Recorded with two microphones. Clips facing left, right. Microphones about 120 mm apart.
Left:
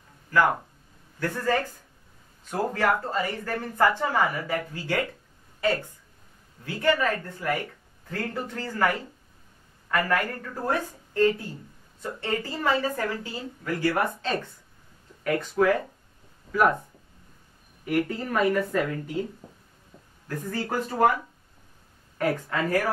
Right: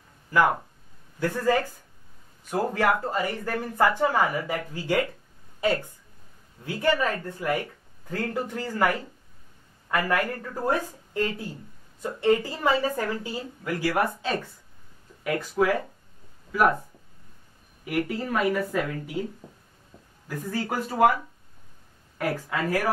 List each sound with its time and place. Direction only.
0.3 s speech: 15° right (ahead or behind)
17.8 s speech: 5° right (ahead or behind)
19.9 s a sound: centre (ahead or behind)
20.2 s speech: 5° right (ahead or behind)
22.2 s speech: 5° right (ahead or behind)